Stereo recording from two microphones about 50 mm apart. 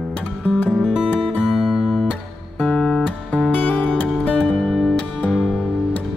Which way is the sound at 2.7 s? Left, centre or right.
Centre.